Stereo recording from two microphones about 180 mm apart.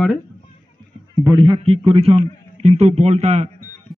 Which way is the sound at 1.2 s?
25° right (ahead or behind).